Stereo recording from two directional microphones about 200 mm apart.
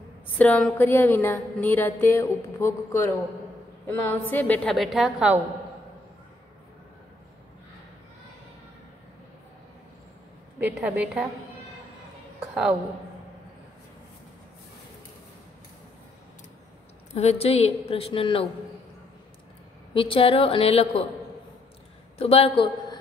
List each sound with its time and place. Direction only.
0.4 s a woman's voice: 5° left (ahead or behind)
10.8 s a woman's voice: 5° right (ahead or behind)
12.4 s a woman's voice: 5° right (ahead or behind)
17.1 s a woman's voice: 30° left (ahead or behind)
19.9 s a woman's voice: 25° left (ahead or behind)
22.2 s a man's voice: 30° left (ahead or behind)